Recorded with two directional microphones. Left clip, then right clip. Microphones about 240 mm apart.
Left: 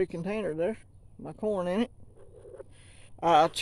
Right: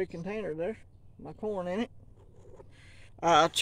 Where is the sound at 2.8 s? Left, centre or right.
Centre.